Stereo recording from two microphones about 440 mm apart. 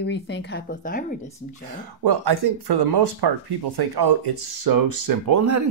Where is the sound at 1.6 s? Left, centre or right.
Right.